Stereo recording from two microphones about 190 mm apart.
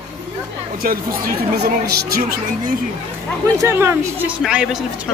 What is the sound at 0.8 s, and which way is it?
Speech, 50° right (ahead or behind).